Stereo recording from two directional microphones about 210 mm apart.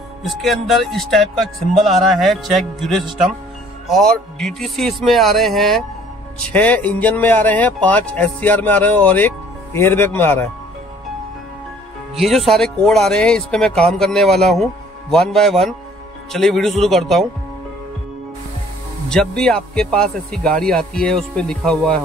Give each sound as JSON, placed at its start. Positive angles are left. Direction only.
{"t": 0.2, "sound": "speech", "side_deg": 0}
{"t": 12.2, "sound": "speech", "side_deg": 0}
{"t": 19.0, "sound": "speech", "side_deg": 5}